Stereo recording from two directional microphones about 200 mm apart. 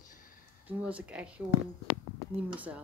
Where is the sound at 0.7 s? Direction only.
5° right (ahead or behind).